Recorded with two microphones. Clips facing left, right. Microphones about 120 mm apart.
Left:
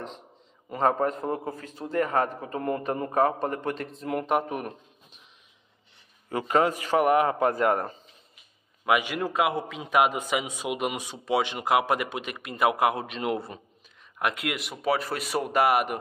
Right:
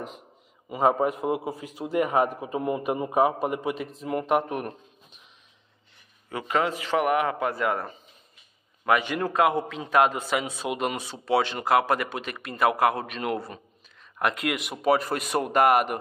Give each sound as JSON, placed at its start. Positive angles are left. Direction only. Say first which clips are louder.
{"t": 0.7, "sound": "a man's voice", "louder": "right 2 dB", "side_deg": -10}
{"t": 6.2, "sound": "a man's voice", "louder": "left 3 dB", "side_deg": 40}
{"t": 8.8, "sound": "a man's voice", "louder": "right 1 dB", "side_deg": 10}
{"t": 14.1, "sound": "speech", "louder": "right 2 dB", "side_deg": 5}